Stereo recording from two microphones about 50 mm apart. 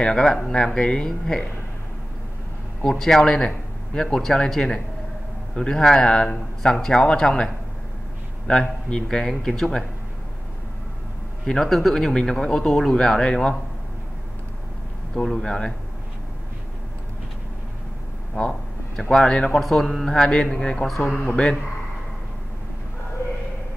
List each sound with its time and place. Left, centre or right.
0.0 s a man's voice: centre
2.8 s a man's voice: centre
9.0 s a man's voice: centre
11.4 s a man's voice: centre
15.1 s a man's voice: centre
18.3 s a man's voice: centre